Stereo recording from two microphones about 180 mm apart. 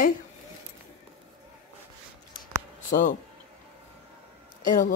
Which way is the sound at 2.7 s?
45° left (ahead or behind).